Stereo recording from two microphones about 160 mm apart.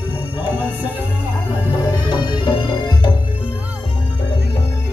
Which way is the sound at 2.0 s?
25° left (ahead or behind).